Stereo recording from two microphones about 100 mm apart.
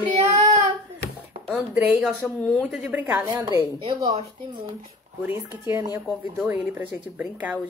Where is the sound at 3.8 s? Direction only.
80° right.